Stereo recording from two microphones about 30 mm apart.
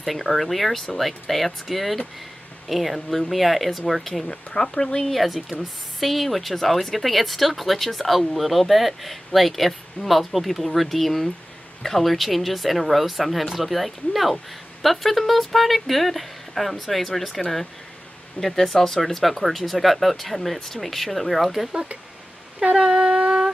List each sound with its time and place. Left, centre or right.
0.0 s speech: centre
4.6 s speech: left
5.1 s speech: centre
22.8 s shofar: right